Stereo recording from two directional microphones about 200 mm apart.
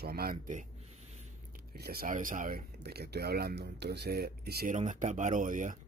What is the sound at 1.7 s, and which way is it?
Speech, 50° right (ahead or behind).